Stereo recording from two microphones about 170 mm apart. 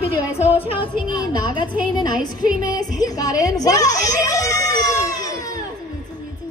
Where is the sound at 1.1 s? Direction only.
25° left (ahead or behind).